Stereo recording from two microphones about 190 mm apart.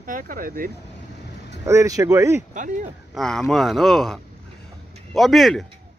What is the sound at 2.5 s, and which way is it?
Speech, 40° right (ahead or behind).